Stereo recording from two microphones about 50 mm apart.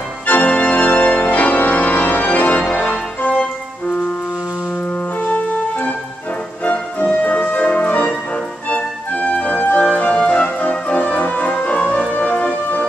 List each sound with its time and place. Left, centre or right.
0.3 s organ: left
3.2 s music: left
5.2 s organ: left
6.6 s music: left
12.1 s organ: left